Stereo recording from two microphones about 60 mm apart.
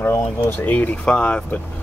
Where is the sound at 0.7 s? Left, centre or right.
Centre.